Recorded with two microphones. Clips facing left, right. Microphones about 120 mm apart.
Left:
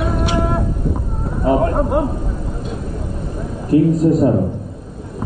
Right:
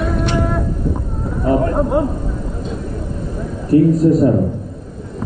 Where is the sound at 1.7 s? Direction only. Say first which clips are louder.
Right 1 dB; centre (ahead or behind).